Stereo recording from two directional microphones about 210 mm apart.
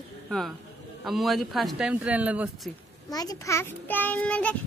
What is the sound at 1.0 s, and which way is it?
Speech, centre (ahead or behind).